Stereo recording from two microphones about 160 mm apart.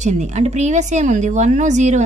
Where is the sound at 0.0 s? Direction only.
45° right (ahead or behind).